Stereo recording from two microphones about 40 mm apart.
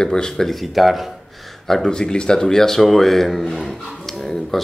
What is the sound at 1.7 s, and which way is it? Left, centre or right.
Speech, centre.